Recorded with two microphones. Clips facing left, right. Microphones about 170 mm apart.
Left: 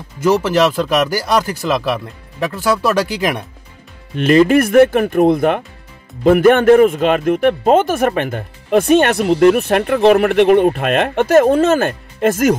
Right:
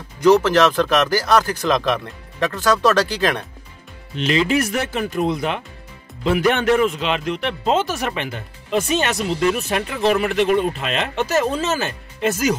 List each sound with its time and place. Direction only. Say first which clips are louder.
0.2 s speech: even; 10° left (ahead or behind)
4.1 s speech: left 8 dB; 55° left (ahead or behind)